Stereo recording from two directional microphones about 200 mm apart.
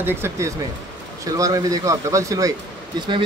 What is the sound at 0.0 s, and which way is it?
A man's voice, 10° right (ahead or behind).